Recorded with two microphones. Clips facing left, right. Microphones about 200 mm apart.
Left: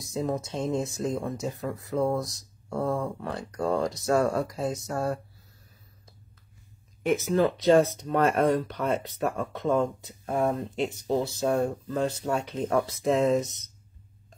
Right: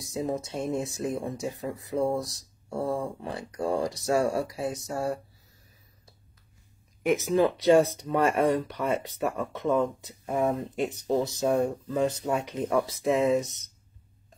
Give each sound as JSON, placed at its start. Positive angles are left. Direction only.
{"t": 0.0, "sound": "speech", "side_deg": -15}
{"t": 7.0, "sound": "speech", "side_deg": -15}
{"t": 10.3, "sound": "speech", "side_deg": 0}
{"t": 11.0, "sound": "speech", "side_deg": -15}